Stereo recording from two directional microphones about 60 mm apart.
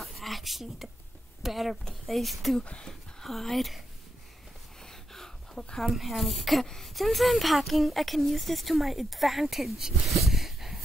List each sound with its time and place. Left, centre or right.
0.0 s a sound: centre
1.4 s a woman's voice: centre
2.6 s speech: centre
3.2 s speech: centre
4.8 s a sound: centre
5.8 s a woman's voice: centre